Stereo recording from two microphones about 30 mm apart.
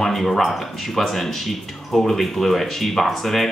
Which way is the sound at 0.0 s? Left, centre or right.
Centre.